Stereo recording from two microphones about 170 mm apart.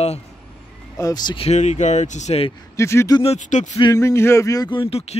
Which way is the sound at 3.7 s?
20° left (ahead or behind).